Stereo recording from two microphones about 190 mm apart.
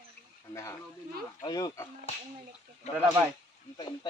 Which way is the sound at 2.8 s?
35° left (ahead or behind).